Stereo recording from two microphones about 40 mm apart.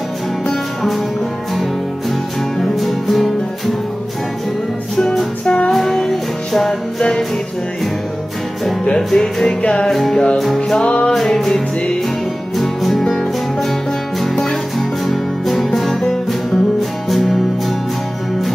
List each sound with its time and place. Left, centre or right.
2.6 s music: centre
4.9 s music: centre
5.4 s music: left
5.7 s music: centre
7.0 s music: centre
8.8 s music: centre
10.7 s music: left
11.1 s music: centre
14.8 s music: centre